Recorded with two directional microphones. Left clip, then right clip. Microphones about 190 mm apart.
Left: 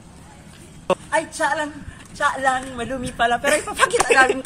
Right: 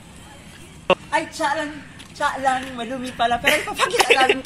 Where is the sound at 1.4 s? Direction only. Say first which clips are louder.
Left 1 dB; centre (ahead or behind).